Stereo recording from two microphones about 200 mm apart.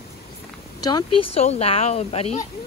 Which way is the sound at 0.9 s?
20° left (ahead or behind).